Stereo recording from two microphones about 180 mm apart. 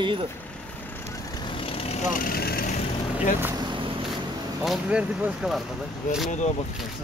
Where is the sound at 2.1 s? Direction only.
55° left (ahead or behind).